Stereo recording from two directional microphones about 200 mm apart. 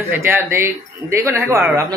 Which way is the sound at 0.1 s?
10° right (ahead or behind).